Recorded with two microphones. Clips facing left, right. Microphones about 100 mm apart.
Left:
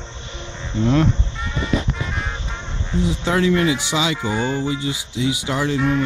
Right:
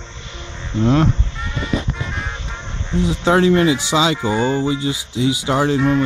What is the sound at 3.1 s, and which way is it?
Speech, 35° right (ahead or behind).